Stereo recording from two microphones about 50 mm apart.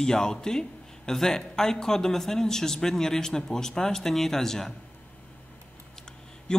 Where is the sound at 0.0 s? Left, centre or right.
Centre.